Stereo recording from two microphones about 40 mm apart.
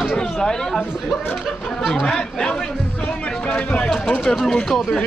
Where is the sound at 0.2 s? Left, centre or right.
Centre.